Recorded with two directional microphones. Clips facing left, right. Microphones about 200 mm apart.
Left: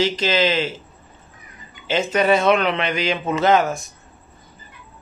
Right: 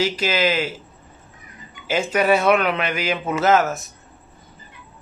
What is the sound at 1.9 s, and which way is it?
A man's voice, 10° right (ahead or behind).